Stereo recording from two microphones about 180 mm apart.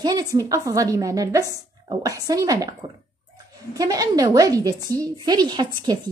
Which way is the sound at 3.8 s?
20° right (ahead or behind).